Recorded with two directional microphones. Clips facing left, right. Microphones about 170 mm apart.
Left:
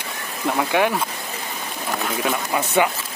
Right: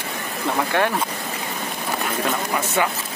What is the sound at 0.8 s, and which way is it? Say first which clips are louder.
Speech: left 2 dB; 10° left (ahead or behind).